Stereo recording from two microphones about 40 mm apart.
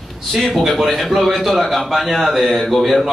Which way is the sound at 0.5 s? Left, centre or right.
Centre.